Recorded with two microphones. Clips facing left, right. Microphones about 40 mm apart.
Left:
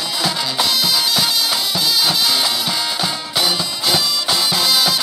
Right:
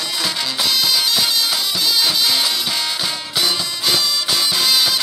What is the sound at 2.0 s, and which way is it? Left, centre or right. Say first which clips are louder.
Music: left 1 dB; left.